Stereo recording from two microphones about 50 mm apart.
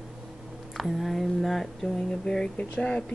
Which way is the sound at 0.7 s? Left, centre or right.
Centre.